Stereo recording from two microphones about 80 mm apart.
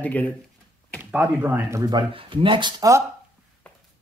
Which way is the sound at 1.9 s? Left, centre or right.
Right.